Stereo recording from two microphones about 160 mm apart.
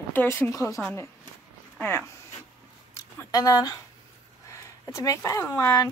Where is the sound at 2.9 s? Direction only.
25° left (ahead or behind).